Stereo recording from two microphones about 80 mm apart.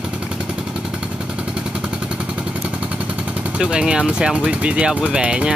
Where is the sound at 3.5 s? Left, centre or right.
Centre.